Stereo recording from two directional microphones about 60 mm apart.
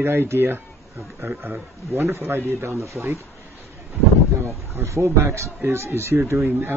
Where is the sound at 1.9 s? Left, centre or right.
Right.